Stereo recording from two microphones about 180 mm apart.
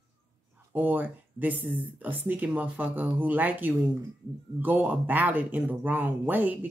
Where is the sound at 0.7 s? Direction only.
10° right (ahead or behind).